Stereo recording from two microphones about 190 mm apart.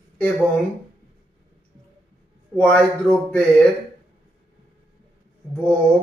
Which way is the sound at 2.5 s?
5° left (ahead or behind).